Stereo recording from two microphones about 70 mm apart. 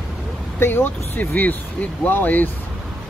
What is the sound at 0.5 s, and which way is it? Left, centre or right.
Speech, left.